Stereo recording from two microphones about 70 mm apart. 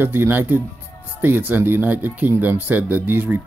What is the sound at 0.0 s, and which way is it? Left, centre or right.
Speech, right.